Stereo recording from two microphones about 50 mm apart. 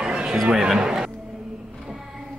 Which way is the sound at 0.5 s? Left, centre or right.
Centre.